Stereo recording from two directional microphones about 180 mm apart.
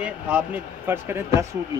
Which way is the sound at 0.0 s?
5° right (ahead or behind).